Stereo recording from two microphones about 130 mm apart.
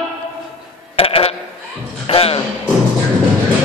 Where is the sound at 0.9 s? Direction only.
45° left (ahead or behind).